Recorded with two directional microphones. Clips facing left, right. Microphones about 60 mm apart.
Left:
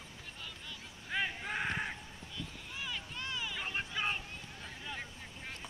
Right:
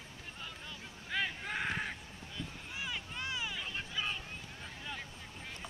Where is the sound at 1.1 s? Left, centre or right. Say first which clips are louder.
Even; centre.